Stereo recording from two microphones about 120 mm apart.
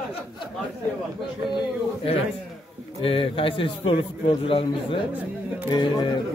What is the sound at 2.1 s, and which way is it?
A man's voice, 55° left (ahead or behind).